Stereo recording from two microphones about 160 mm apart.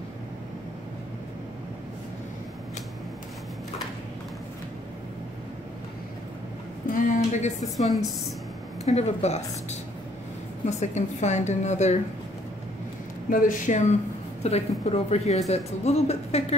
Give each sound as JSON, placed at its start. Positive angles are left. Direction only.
{"t": 6.9, "sound": "a sound", "side_deg": 55}
{"t": 7.6, "sound": "a woman's voice", "side_deg": 0}
{"t": 8.8, "sound": "a woman's voice", "side_deg": 40}
{"t": 10.8, "sound": "a woman's voice", "side_deg": 45}
{"t": 13.3, "sound": "a woman's voice", "side_deg": 55}